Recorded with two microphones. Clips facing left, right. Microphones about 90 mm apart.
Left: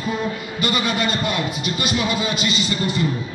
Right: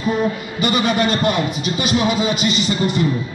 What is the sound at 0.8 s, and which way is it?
Speech, 60° right (ahead or behind).